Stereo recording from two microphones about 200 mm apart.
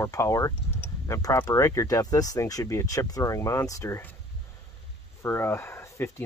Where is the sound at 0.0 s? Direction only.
15° left (ahead or behind).